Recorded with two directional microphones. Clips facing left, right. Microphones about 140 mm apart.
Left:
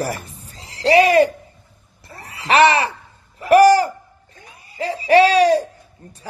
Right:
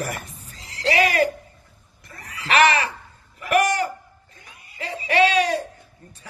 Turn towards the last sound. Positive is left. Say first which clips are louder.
# left 7 dB
turn(degrees=35)  # may be behind; listen again after turning